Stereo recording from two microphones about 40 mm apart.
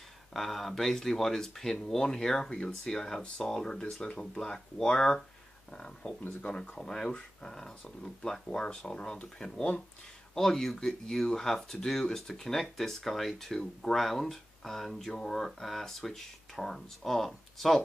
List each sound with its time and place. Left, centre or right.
0.3 s speech: centre; by 6.7 s left
6.7 s speech: centre
10.3 s speech: centre